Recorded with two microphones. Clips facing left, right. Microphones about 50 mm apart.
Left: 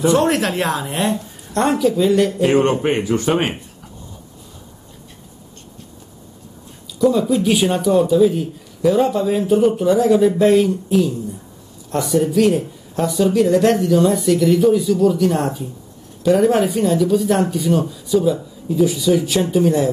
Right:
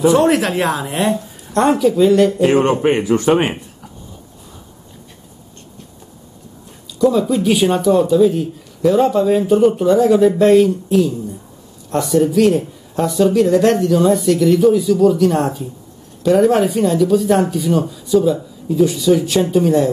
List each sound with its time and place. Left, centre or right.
0.0 s speech: centre
3.0 s speech: right
7.0 s speech: centre